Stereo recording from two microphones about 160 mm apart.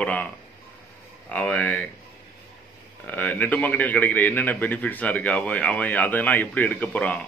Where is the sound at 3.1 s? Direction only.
10° left (ahead or behind).